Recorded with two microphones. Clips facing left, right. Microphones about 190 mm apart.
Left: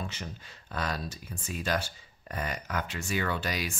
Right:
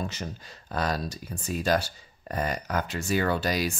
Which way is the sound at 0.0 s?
40° right (ahead or behind).